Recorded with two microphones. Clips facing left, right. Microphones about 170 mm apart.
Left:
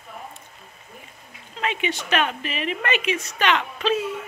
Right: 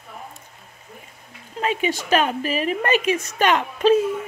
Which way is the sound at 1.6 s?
40° right (ahead or behind).